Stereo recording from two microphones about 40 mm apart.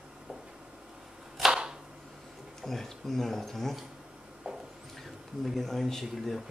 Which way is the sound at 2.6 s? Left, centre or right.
Centre.